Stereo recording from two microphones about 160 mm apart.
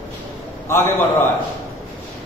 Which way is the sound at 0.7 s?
15° left (ahead or behind).